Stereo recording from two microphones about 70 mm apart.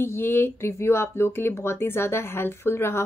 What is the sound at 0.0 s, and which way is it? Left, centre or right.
Speech, left.